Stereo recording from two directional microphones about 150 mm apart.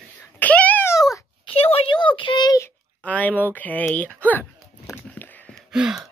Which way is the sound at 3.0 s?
10° left (ahead or behind).